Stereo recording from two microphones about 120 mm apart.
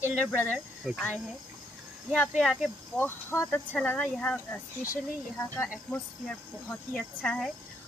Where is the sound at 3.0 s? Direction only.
20° left (ahead or behind).